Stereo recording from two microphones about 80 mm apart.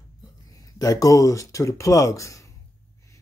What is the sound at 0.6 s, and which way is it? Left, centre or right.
Speech, left.